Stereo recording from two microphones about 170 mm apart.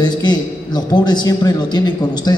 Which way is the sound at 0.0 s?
25° left (ahead or behind).